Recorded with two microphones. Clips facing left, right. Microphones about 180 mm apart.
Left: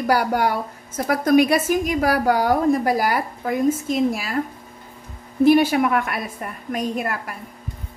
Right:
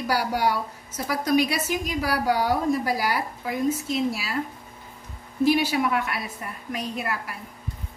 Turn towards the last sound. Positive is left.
turn(degrees=50)  # may be behind; listen again after turning